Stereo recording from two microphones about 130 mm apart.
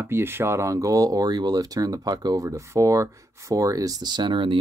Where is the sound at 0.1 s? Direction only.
15° right (ahead or behind).